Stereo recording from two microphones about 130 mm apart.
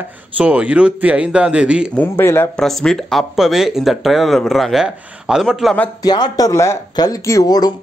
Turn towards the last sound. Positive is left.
turn(degrees=30)  # may be behind; listen again after turning